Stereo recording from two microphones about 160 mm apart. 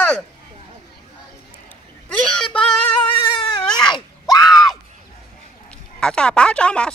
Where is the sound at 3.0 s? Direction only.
30° left (ahead or behind).